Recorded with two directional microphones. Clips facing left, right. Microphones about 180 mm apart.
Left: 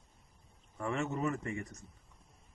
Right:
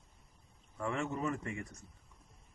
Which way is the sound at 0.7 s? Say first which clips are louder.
Left 1 dB; 20° left (ahead or behind).